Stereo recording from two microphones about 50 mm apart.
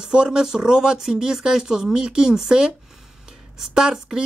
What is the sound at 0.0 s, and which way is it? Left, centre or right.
Speech, centre.